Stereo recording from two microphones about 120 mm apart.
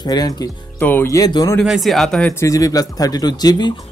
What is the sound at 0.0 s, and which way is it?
Speech, 35° left (ahead or behind).